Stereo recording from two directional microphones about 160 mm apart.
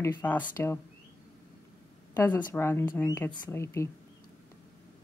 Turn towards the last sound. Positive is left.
turn(degrees=15)  # may be behind; listen again after turning